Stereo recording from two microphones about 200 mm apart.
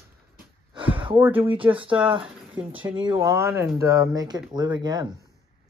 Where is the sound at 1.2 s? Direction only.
10° right (ahead or behind).